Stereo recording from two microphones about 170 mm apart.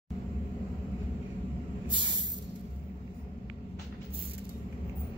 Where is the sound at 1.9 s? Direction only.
30° right (ahead or behind).